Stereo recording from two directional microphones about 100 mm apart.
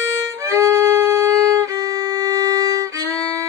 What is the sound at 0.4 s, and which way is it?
Violin, 30° right (ahead or behind).